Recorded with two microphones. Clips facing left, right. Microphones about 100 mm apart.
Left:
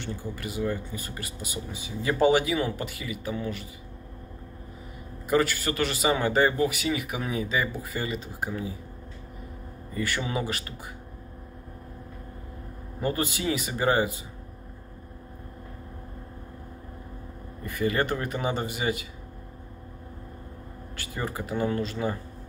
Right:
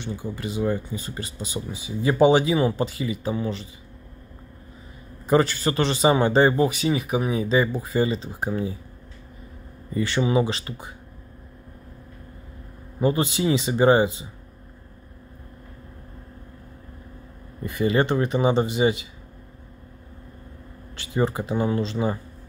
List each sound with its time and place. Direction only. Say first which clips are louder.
0.0 s a man's voice: right 4 dB; 15° right (ahead or behind)
5.3 s a man's voice: right 4 dB; 30° right (ahead or behind)
9.9 s a man's voice: right 8 dB; 25° right (ahead or behind)
13.0 s a man's voice: right 6 dB; 20° right (ahead or behind)
17.6 s a man's voice: right 5 dB; 20° right (ahead or behind)
20.9 s speech: right 9 dB; 20° right (ahead or behind)